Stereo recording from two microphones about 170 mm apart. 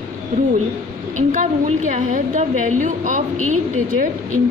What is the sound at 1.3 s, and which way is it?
A woman's voice, 45° right (ahead or behind).